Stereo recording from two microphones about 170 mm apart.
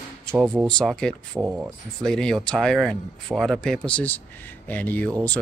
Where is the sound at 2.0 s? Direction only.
5° left (ahead or behind).